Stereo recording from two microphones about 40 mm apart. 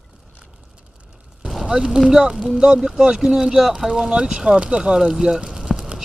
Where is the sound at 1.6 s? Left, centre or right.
Centre.